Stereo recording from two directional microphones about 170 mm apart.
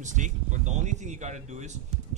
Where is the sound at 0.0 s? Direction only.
45° right (ahead or behind).